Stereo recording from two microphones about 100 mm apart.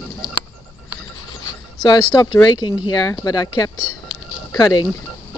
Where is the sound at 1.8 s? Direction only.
45° left (ahead or behind).